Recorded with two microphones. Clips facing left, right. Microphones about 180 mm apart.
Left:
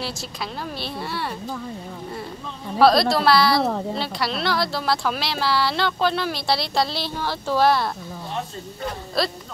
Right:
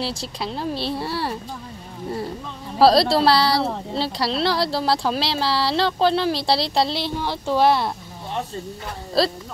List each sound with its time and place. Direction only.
0.0 s speech: 30° right (ahead or behind)
2.8 s speech: 30° right (ahead or behind)
9.2 s speech: 30° right (ahead or behind)